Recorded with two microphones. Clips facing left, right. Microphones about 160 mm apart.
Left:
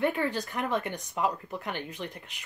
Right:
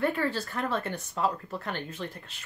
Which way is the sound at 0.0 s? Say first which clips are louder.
Even; 15° left (ahead or behind).